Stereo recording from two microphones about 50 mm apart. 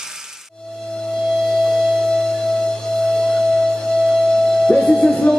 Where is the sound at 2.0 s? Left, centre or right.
Centre.